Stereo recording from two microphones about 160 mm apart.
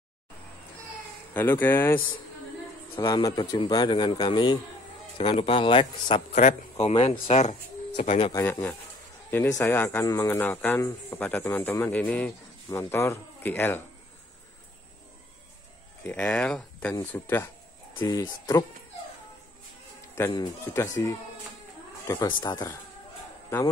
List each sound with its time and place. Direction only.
1.3 s speech: 10° left (ahead or behind)
3.0 s a man's voice: 30° left (ahead or behind)
6.3 s speech: 45° left (ahead or behind)
8.2 s a man's voice: 20° left (ahead or behind)
16.0 s speech: 10° left (ahead or behind)
17.9 s a man's voice: 30° left (ahead or behind)
20.2 s a man's voice: 15° left (ahead or behind)